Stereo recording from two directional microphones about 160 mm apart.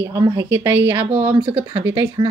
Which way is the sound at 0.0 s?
25° right (ahead or behind).